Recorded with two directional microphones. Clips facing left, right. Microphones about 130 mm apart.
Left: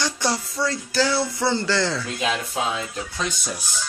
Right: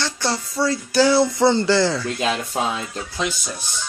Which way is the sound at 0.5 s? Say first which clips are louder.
Right 5 dB; 10° right (ahead or behind).